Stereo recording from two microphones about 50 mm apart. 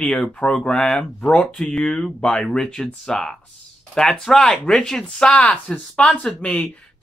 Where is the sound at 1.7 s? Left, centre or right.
Centre.